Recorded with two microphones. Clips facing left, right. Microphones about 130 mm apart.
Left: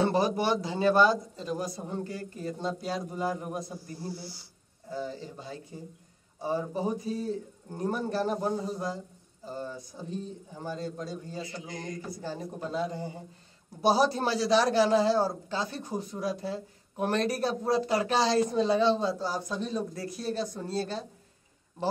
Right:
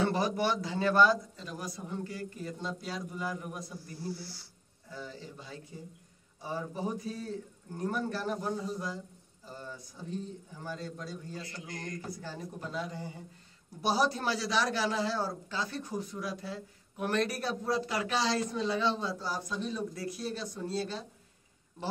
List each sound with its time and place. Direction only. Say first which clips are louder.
0.0 s a man's voice: left 3 dB; 25° left (ahead or behind)
4.8 s a man's voice: left 8 dB; 30° left (ahead or behind)
11.3 s mantra: left 4 dB; 10° left (ahead or behind)
12.2 s a man's voice: left 5 dB; 25° left (ahead or behind)
19.5 s a man's voice: left 3 dB; 40° left (ahead or behind)